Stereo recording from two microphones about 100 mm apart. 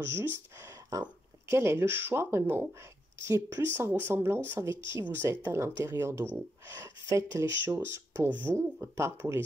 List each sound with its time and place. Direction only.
0.0 s speech: 25° right (ahead or behind)